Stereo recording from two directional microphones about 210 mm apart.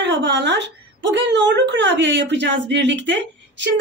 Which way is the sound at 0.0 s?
60° right (ahead or behind).